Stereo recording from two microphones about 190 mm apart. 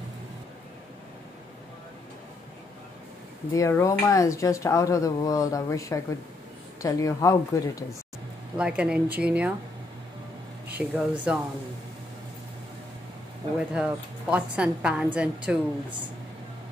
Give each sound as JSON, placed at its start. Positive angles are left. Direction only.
{"t": 3.5, "sound": "speech", "side_deg": 15}
{"t": 8.5, "sound": "a woman's voice", "side_deg": -5}
{"t": 10.7, "sound": "a woman's voice", "side_deg": -5}
{"t": 13.6, "sound": "a woman's voice", "side_deg": -5}